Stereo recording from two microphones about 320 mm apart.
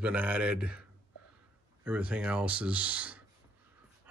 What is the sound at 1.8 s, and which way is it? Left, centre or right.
Speech, centre.